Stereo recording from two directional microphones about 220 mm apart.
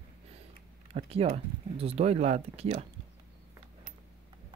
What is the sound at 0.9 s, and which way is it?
Speech, 25° right (ahead or behind).